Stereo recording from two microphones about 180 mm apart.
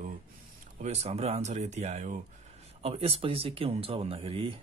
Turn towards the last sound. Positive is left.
turn(degrees=-30)  # may be behind; listen again after turning